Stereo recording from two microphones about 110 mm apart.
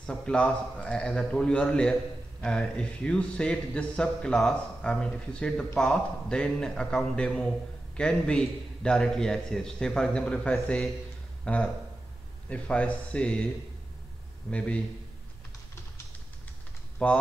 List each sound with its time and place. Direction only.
0.0 s a man's voice: 5° left (ahead or behind)
14.5 s a man's voice: 10° left (ahead or behind)
17.0 s a man's voice: 10° left (ahead or behind)